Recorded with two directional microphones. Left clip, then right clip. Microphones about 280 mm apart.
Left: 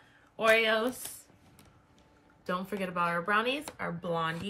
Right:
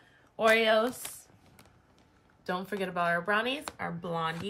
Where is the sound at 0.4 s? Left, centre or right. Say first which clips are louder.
Right 1 dB; right.